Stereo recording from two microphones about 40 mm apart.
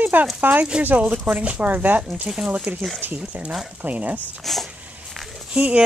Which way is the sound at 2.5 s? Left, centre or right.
Right.